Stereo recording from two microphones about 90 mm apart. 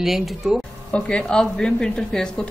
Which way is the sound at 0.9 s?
10° left (ahead or behind).